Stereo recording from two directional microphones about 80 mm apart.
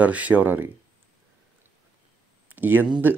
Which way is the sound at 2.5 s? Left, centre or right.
Right.